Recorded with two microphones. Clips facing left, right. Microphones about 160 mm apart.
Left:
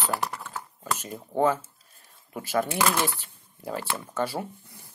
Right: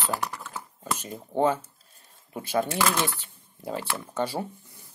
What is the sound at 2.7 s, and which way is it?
Speech, 15° left (ahead or behind).